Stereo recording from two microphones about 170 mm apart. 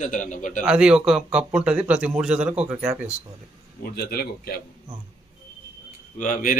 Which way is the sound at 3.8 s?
65° left (ahead or behind).